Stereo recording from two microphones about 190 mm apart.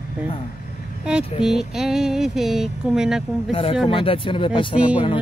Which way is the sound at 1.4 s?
Centre (ahead or behind).